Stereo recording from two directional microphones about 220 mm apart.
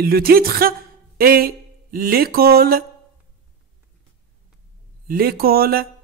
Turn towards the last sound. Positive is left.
turn(degrees=-45)  # may be behind; listen again after turning